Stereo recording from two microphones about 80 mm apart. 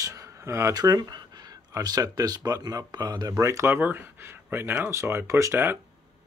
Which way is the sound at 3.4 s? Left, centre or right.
Right.